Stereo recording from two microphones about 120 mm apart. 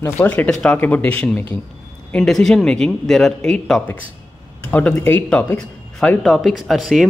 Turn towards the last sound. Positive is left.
turn(degrees=-5)  # may be behind; listen again after turning